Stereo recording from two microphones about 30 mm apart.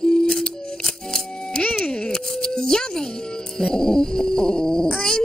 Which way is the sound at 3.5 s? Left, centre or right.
Centre.